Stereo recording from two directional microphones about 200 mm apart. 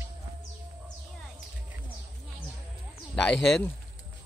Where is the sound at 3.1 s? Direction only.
5° left (ahead or behind).